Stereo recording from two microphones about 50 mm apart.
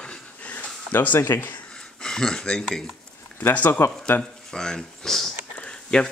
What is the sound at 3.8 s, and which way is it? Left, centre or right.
Speech, left.